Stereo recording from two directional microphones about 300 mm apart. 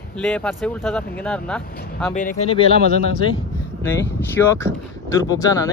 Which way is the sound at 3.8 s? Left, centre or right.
Centre.